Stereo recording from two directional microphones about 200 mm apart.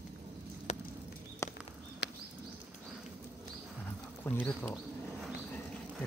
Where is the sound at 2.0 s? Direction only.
60° left (ahead or behind).